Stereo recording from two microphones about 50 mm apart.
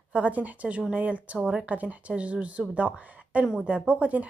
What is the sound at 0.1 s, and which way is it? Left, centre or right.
Speech, right.